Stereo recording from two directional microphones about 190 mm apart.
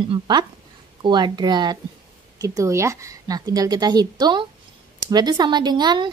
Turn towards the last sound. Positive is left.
turn(degrees=-25)  # may be behind; listen again after turning